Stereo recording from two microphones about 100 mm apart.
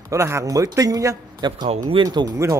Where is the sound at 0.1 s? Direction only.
30° right (ahead or behind).